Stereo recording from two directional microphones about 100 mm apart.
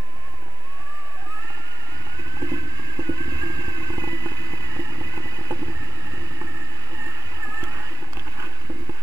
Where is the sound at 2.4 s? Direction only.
40° right (ahead or behind).